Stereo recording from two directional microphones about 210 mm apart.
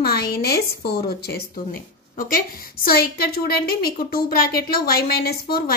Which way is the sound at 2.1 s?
45° left (ahead or behind).